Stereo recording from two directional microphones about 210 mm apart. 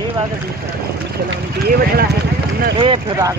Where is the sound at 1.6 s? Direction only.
45° right (ahead or behind).